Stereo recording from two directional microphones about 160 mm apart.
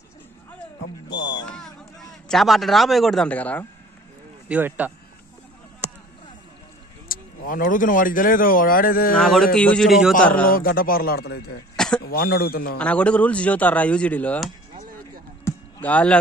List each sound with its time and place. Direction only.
1.5 s a man's voice: 5° left (ahead or behind)
4.5 s speech: 10° right (ahead or behind)
5.8 s a sound: 10° right (ahead or behind)
7.1 s speech: 60° left (ahead or behind)
9.1 s a man's voice: centre (ahead or behind)
10.4 s speech: 65° left (ahead or behind); by 11.6 s 90° left
11.7 s a sound: 5° left (ahead or behind)
12.0 s speech: 70° left (ahead or behind)
12.7 s speech: 10° left (ahead or behind)
15.4 s a sound: 10° left (ahead or behind)